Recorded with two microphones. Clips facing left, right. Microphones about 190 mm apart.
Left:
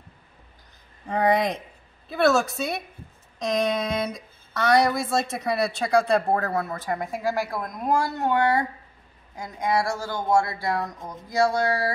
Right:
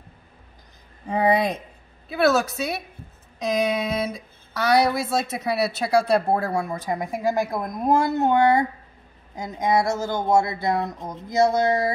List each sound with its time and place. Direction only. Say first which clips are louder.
1.0 s a woman's voice: right 1 dB; 10° right (ahead or behind)